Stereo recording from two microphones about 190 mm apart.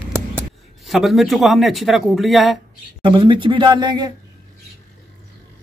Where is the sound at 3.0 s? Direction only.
25° right (ahead or behind).